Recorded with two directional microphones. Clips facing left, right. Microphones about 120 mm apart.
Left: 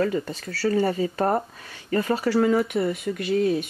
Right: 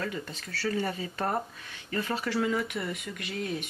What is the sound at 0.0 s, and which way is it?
Speech, 40° left (ahead or behind).